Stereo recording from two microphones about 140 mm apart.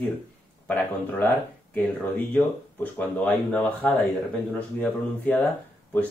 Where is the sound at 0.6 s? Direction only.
15° left (ahead or behind).